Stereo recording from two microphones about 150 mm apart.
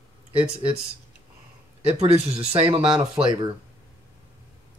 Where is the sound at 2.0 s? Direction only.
45° right (ahead or behind).